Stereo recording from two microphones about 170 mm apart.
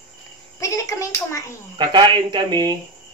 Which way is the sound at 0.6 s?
20° left (ahead or behind).